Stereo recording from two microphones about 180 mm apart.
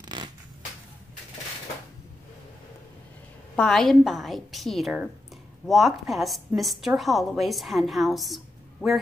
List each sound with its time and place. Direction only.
0.1 s scissors: 25° right (ahead or behind)
3.5 s a woman's voice: centre (ahead or behind)